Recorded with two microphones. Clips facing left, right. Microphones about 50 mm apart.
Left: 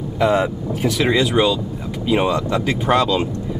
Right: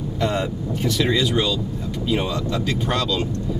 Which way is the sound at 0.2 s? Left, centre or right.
Centre.